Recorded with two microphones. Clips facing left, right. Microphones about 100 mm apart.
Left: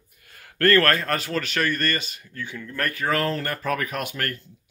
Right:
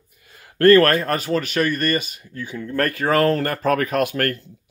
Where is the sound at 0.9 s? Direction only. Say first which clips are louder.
Right 4 dB; 20° right (ahead or behind).